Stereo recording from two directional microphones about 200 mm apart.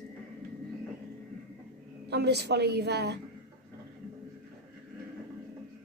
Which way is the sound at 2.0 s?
55° right (ahead or behind).